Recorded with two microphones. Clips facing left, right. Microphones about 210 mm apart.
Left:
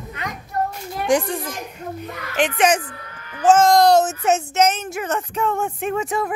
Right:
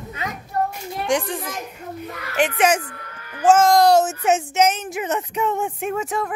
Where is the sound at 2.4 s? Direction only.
5° right (ahead or behind).